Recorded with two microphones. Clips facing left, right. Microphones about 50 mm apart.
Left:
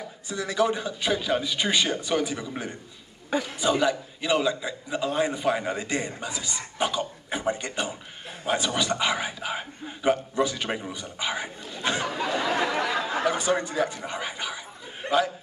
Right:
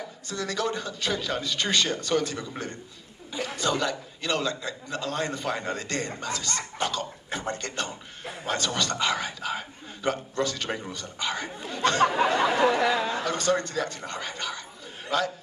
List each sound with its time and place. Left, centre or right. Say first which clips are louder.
0.3 s a man's voice: left 4 dB; centre
12.5 s speech: right 3 dB; right
13.1 s a man's voice: left 1 dB; centre